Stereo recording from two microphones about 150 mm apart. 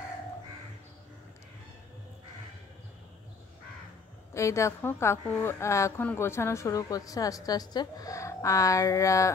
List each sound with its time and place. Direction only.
4.3 s a woman's voice: 20° left (ahead or behind)